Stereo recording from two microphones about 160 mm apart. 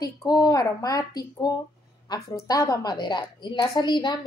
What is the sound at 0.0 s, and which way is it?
A woman's voice, 25° left (ahead or behind).